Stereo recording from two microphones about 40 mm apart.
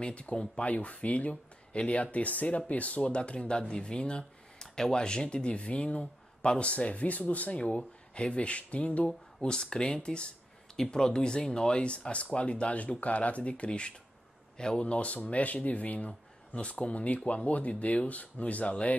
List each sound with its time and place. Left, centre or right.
0.0 s speech: left
9.4 s speech: centre; by 16.1 s left
16.1 s a sound: left
16.8 s speech: left
17.2 s speech: left
17.5 s speech: left